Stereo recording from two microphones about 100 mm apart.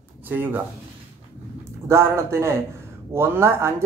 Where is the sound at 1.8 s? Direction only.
30° right (ahead or behind).